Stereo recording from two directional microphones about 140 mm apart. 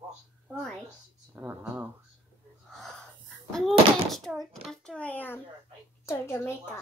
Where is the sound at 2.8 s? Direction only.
Centre (ahead or behind).